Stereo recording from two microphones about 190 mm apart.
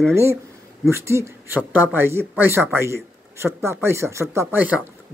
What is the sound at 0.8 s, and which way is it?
Speech, 15° right (ahead or behind).